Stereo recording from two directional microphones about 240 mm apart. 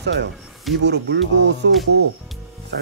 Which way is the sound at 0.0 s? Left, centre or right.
Right.